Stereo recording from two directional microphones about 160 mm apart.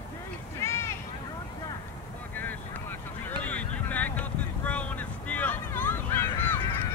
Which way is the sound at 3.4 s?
10° left (ahead or behind).